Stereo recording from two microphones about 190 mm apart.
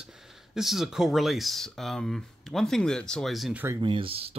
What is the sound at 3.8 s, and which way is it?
Speech, 25° right (ahead or behind).